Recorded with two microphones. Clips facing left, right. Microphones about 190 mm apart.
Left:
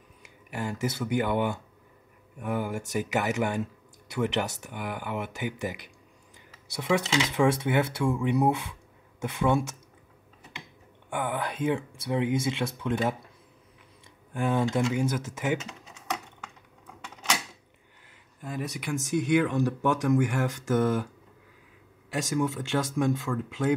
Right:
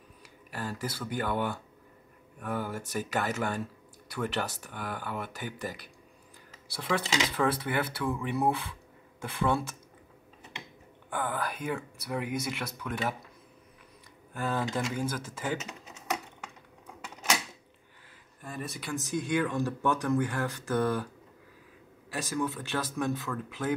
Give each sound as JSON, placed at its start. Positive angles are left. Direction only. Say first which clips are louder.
{"t": 0.5, "sound": "speech", "louder": "left 5 dB", "side_deg": 20}
{"t": 6.9, "sound": "speech", "louder": "left 5 dB", "side_deg": 10}
{"t": 7.3, "sound": "speech", "louder": "left 7 dB", "side_deg": 25}
{"t": 11.1, "sound": "speech", "louder": "left 2 dB", "side_deg": 20}
{"t": 14.3, "sound": "speech", "louder": "left 5 dB", "side_deg": 25}
{"t": 15.6, "sound": "typing", "louder": "even", "side_deg": -5}
{"t": 17.0, "sound": "a sound", "louder": "even", "side_deg": -5}
{"t": 19.0, "sound": "speech", "louder": "left 5 dB", "side_deg": 20}
{"t": 22.1, "sound": "speech", "louder": "left 4 dB", "side_deg": 20}